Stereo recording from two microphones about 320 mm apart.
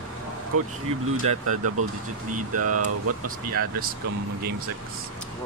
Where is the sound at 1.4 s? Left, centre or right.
Right.